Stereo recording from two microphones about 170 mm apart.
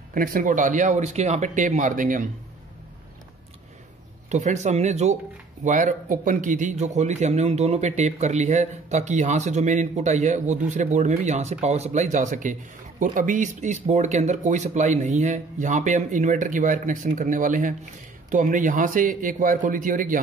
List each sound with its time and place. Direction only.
0.1 s a man's voice: 50° right (ahead or behind)
4.3 s a man's voice: 45° right (ahead or behind)